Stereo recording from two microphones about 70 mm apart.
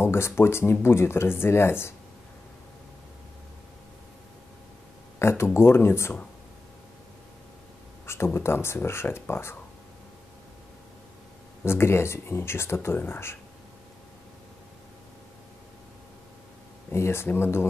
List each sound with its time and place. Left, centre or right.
0.0 s speech: left
5.2 s speech: left
8.4 s speech: left
11.6 s speech: left
16.9 s speech: left